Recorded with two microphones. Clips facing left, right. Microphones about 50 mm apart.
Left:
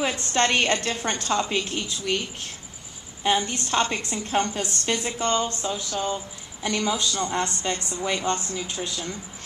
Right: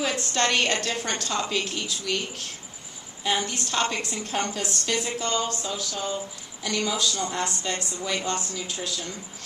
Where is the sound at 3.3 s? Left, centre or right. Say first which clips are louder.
Left 3 dB; left.